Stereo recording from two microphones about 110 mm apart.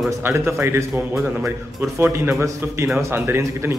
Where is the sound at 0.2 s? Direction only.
20° right (ahead or behind).